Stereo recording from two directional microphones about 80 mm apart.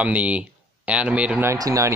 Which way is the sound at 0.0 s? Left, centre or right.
Centre.